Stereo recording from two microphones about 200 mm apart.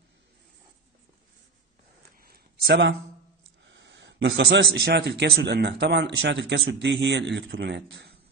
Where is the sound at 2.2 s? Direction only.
50° right (ahead or behind).